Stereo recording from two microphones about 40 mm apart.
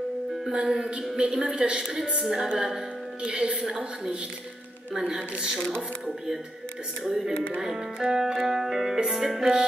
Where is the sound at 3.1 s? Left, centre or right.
Right.